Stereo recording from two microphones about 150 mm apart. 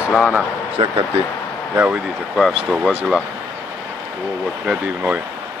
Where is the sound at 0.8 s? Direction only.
35° right (ahead or behind).